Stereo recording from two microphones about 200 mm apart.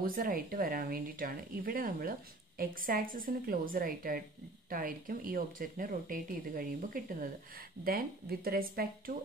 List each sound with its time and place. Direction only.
0.0 s speech: 45° right (ahead or behind)